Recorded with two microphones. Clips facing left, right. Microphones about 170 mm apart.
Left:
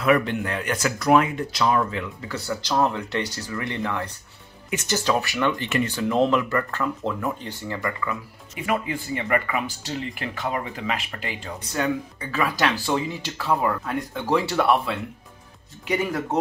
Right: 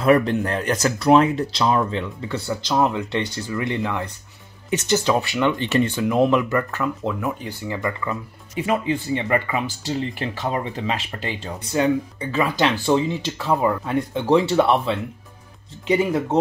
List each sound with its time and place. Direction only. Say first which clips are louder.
0.0 s speech: right 4 dB; 35° right (ahead or behind)
6.0 s speech: even; 10° right (ahead or behind)
8.0 s speech: right 2 dB; 25° right (ahead or behind)